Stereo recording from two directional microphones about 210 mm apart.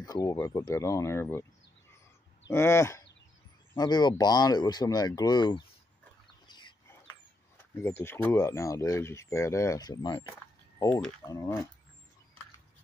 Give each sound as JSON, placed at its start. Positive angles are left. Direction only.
{"t": 0.0, "sound": "speech", "side_deg": 15}
{"t": 2.5, "sound": "speech", "side_deg": 10}
{"t": 6.4, "sound": "chicken", "side_deg": 20}
{"t": 7.7, "sound": "speech", "side_deg": 10}
{"t": 10.8, "sound": "speech", "side_deg": 5}
{"t": 11.2, "sound": "speech", "side_deg": 15}